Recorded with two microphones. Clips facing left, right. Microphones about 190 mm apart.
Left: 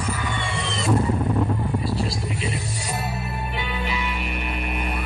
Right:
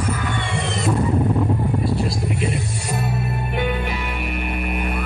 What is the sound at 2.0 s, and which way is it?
Music, 55° right (ahead or behind).